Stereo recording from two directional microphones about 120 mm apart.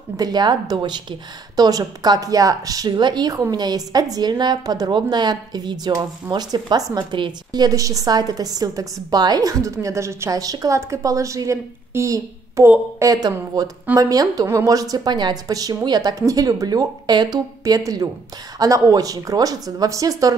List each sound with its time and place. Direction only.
0.2 s a woman's voice: 35° right (ahead or behind)